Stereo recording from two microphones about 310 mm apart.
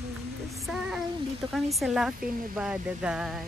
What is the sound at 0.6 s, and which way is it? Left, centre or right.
Child singing, centre.